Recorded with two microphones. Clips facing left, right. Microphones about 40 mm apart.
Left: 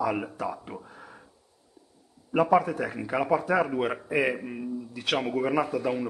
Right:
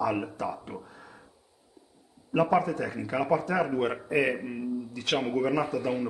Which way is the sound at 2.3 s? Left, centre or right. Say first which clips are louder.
Left 2 dB; centre.